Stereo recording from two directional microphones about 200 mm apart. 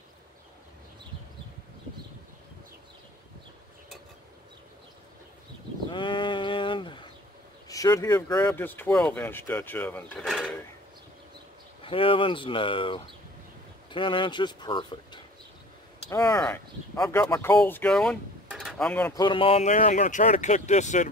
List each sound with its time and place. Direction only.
5.9 s sheep: 25° left (ahead or behind)
7.6 s speech: 15° left (ahead or behind); by 10.6 s centre (ahead or behind)
11.8 s speech: 25° left (ahead or behind)
16.1 s speech: 15° left (ahead or behind)
19.1 s speech: 25° left (ahead or behind)